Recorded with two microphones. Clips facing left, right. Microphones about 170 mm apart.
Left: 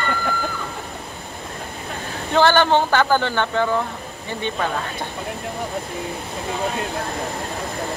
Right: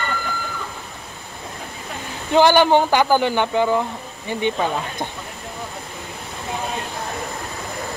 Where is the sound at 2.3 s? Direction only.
15° right (ahead or behind).